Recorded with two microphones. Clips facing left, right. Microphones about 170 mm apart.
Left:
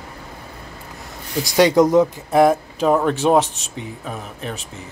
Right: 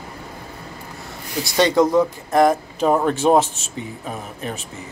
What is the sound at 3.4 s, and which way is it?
Speech, 35° left (ahead or behind).